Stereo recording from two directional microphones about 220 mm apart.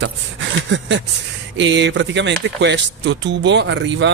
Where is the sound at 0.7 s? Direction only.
55° right (ahead or behind).